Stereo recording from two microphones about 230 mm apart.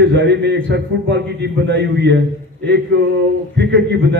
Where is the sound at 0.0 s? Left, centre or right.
Right.